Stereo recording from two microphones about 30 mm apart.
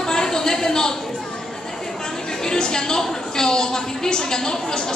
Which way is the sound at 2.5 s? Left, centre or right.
Left.